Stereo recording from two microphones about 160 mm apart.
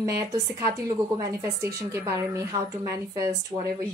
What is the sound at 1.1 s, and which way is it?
A woman's voice, 20° right (ahead or behind).